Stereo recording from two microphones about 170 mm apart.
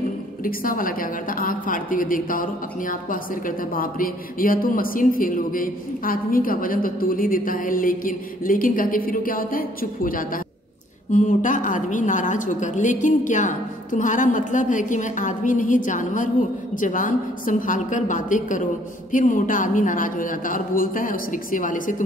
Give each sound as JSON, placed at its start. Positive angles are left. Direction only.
{"t": 0.4, "sound": "a woman's voice", "side_deg": 55}